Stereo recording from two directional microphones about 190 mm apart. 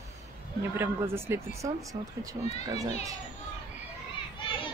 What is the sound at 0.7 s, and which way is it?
Speech, 15° right (ahead or behind).